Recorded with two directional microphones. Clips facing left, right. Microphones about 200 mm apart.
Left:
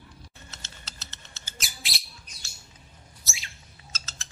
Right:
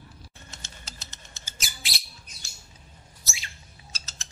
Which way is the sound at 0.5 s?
15° right (ahead or behind).